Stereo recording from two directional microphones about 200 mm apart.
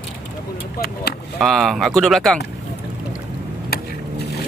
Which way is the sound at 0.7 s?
50° left (ahead or behind).